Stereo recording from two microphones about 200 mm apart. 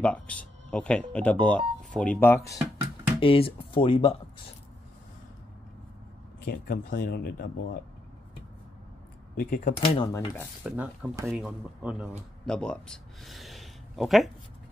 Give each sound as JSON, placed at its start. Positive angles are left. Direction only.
{"t": 0.0, "sound": "speech", "side_deg": 5}
{"t": 3.2, "sound": "speech", "side_deg": 25}
{"t": 6.4, "sound": "speech", "side_deg": 45}
{"t": 9.4, "sound": "speech", "side_deg": 45}
{"t": 9.8, "sound": "speech", "side_deg": 20}
{"t": 10.6, "sound": "speech", "side_deg": -10}